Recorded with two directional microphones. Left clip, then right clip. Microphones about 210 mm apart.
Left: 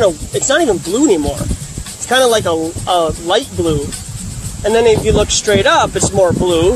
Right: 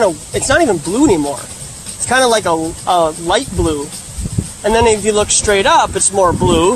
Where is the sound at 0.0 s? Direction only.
20° right (ahead or behind).